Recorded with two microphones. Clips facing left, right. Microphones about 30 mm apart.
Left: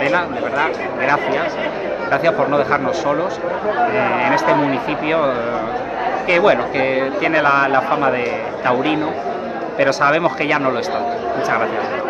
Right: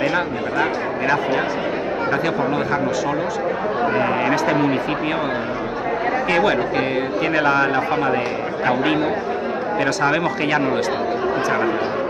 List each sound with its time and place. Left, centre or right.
0.1 s speech: centre
3.9 s speech: left
4.3 s a man's voice: centre
10.0 s speech: centre